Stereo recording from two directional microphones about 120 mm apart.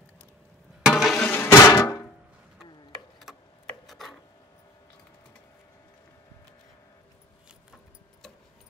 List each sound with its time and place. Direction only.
0.8 s a sound: 5° right (ahead or behind)
1.3 s drum: 20° left (ahead or behind)
3.8 s filing: centre (ahead or behind)